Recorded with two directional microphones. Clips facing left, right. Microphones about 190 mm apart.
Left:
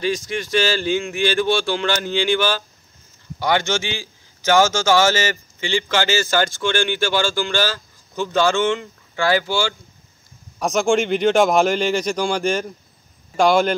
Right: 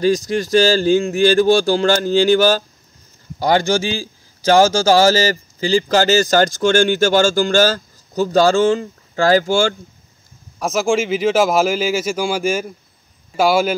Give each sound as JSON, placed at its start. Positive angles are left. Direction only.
{"t": 0.0, "sound": "a man's voice", "side_deg": -40}
{"t": 10.6, "sound": "speech", "side_deg": 0}